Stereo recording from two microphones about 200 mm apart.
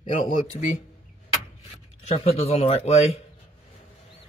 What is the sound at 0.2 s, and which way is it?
Speech, 35° left (ahead or behind).